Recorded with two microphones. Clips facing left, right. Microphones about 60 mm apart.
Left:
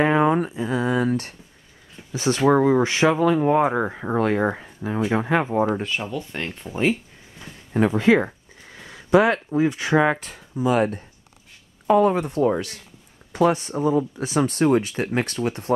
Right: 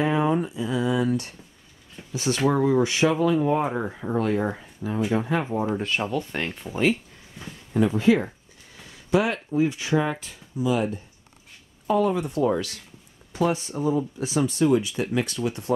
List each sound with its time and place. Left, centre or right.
0.0 s a sound: left
2.1 s speech: left
3.8 s speech: left
4.6 s speech: left
6.0 s speech: centre
6.7 s speech: centre
7.8 s speech: left
12.4 s speech: left
13.3 s speech: left